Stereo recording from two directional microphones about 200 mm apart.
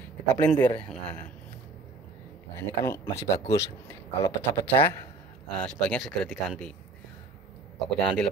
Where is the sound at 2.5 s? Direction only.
15° left (ahead or behind).